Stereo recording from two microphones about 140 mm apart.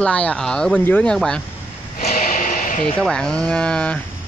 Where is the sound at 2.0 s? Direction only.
50° left (ahead or behind).